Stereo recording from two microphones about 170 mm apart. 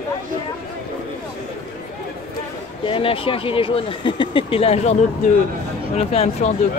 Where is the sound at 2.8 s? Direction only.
30° left (ahead or behind).